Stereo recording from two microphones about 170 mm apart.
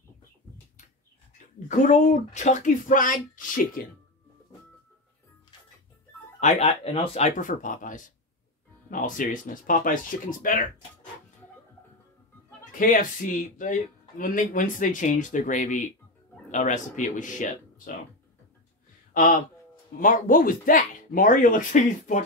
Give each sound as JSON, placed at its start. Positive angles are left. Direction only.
{"t": 1.7, "sound": "speech", "side_deg": 45}
{"t": 6.4, "sound": "speech", "side_deg": 40}
{"t": 12.7, "sound": "speech", "side_deg": 50}
{"t": 19.1, "sound": "speech", "side_deg": 55}